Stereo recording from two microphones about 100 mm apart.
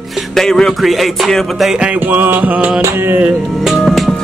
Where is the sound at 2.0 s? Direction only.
20° right (ahead or behind).